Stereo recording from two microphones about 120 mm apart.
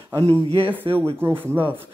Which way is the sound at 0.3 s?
50° right (ahead or behind).